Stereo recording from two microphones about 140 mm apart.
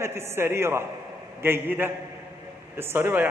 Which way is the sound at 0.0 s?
20° right (ahead or behind).